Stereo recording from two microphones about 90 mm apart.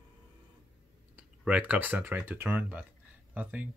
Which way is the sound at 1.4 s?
15° right (ahead or behind).